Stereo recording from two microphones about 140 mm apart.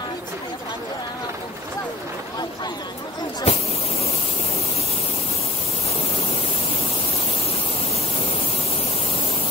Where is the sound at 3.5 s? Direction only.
45° left (ahead or behind).